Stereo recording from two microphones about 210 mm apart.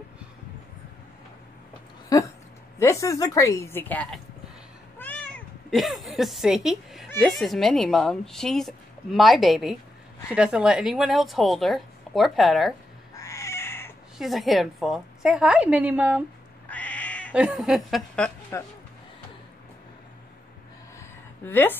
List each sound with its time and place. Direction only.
2.0 s a sound: 15° left (ahead or behind)
2.8 s a woman's voice: 15° left (ahead or behind); by 12.7 s centre (ahead or behind)
13.1 s cat: 15° left (ahead or behind)
14.1 s a woman's voice: centre (ahead or behind)
16.6 s cat: 5° left (ahead or behind)
17.3 s a woman's voice: 5° right (ahead or behind)
21.5 s a woman's voice: 10° left (ahead or behind)